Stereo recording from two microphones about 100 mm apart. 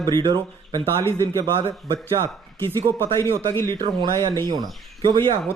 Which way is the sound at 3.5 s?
25° left (ahead or behind).